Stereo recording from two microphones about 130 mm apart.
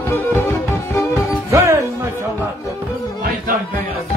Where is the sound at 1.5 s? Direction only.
20° right (ahead or behind).